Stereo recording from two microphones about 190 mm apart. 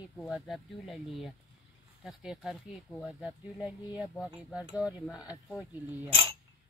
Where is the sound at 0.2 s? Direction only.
Centre (ahead or behind).